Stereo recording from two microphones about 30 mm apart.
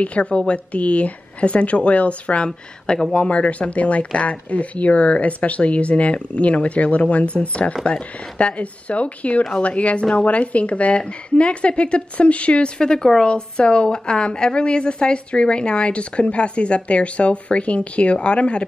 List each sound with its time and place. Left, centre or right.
0.0 s speech: left
0.3 s speech: left
7.8 s a woman's voice: left
12.7 s a woman's voice: left